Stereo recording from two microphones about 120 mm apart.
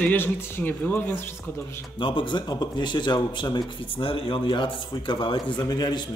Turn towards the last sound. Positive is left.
turn(degrees=35)  # may be behind; listen again after turning